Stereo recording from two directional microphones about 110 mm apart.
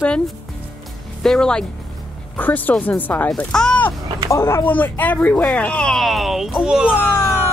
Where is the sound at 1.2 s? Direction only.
5° left (ahead or behind).